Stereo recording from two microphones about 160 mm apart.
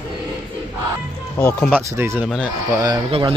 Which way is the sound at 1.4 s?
15° left (ahead or behind).